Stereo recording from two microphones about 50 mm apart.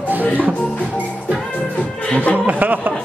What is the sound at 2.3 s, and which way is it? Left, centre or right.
Chuckle, right.